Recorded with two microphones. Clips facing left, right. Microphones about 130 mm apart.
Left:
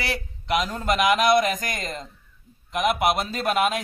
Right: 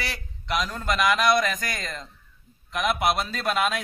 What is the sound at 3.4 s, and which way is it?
Speech, 10° left (ahead or behind).